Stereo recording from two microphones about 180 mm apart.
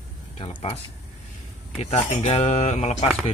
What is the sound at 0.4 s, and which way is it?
Speech, 30° left (ahead or behind).